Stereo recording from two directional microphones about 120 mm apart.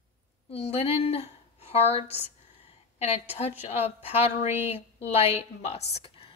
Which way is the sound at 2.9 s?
60° left (ahead or behind).